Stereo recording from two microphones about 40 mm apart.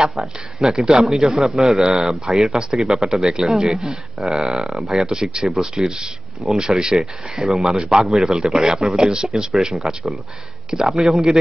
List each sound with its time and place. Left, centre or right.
0.6 s speech: centre
5.0 s speech: centre
7.0 s speech: centre
9.8 s speech: centre
11.0 s speech: centre